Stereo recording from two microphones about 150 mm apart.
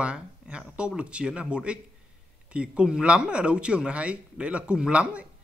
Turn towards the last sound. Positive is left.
turn(degrees=-5)  # may be behind; listen again after turning